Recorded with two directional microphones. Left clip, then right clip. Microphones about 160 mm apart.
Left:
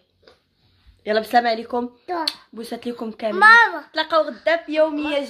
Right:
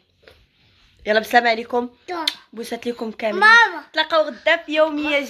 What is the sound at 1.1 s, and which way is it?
Speech, 10° right (ahead or behind).